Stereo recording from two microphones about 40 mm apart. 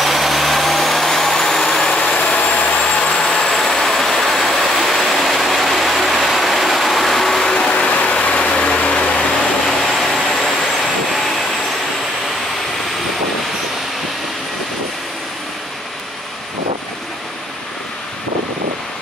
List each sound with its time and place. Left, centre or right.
0.0 s vehicle: centre
2.0 s vehicle: left
7.6 s vehicle: left
9.7 s vehicle: centre